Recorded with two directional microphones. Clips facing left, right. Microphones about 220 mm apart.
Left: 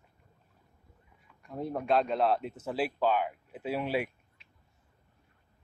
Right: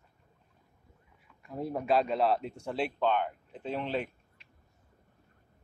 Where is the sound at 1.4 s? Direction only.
Centre (ahead or behind).